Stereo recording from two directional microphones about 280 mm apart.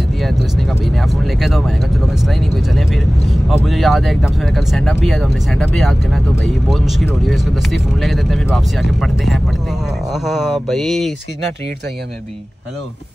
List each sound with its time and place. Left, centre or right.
0.2 s speech: centre